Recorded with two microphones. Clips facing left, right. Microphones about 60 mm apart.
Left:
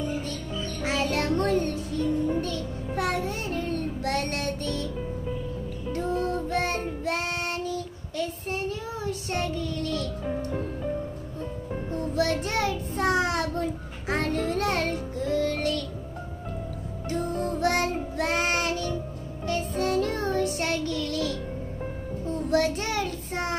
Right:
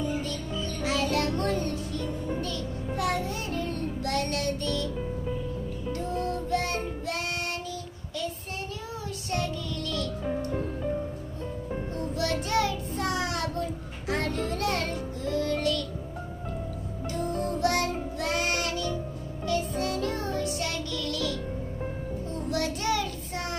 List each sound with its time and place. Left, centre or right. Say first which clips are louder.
0.8 s music: left 1 dB; left
2.0 s music: left 9 dB; centre
3.0 s music: left 2 dB; left
9.3 s music: even; left
10.5 s music: even; centre
12.2 s child singing: left 1 dB; left
17.1 s music: left 2 dB; left
22.5 s child singing: left 3 dB; left